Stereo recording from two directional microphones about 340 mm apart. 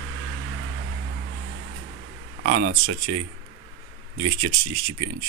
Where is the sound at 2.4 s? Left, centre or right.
Right.